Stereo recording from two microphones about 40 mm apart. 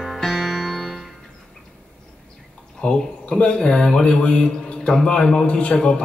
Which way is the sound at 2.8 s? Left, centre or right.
Left.